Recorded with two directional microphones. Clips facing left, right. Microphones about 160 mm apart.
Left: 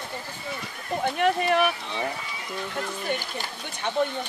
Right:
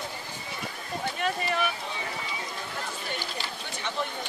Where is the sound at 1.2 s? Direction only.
60° left (ahead or behind).